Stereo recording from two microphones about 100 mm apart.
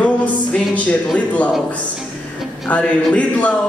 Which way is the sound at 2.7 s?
15° left (ahead or behind).